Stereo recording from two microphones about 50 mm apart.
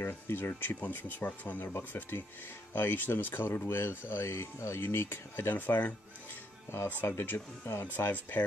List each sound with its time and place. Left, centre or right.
0.0 s speech: left
1.9 s speech: left
6.9 s speech: left
7.8 s speech: left